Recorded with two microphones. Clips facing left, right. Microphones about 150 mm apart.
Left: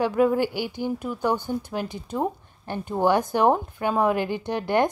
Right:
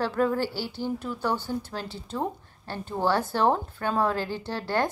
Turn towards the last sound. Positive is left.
turn(degrees=20)  # may be behind; listen again after turning